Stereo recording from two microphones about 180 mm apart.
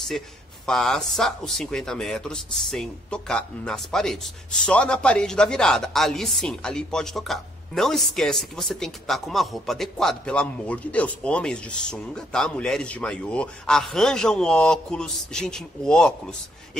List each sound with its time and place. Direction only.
0.7 s a man's voice: 5° left (ahead or behind)